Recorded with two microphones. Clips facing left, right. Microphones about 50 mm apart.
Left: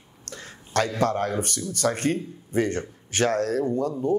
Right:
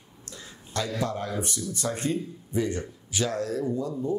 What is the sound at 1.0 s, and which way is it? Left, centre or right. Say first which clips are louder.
Speech: left 6 dB; left.